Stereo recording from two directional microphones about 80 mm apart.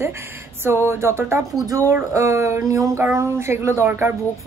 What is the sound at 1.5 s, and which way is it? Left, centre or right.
Speech, right.